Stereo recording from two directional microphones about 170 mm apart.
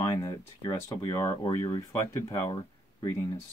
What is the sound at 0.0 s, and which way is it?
Speech, 20° left (ahead or behind).